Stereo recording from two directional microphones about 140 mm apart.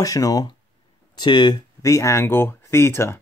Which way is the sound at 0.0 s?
25° left (ahead or behind).